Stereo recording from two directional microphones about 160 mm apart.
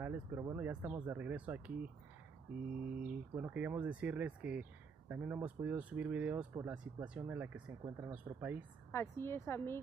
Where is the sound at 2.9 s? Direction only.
10° right (ahead or behind).